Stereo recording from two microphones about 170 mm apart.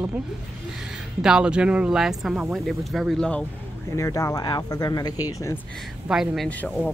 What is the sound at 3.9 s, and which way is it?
Speech, 15° left (ahead or behind).